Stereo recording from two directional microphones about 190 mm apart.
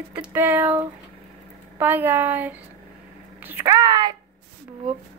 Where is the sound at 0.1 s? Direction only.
10° right (ahead or behind).